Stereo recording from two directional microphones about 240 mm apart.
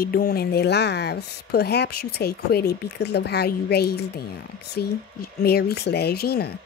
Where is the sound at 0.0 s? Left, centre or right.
Left.